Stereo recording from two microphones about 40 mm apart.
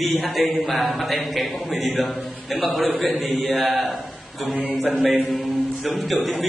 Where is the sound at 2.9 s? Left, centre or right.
Left.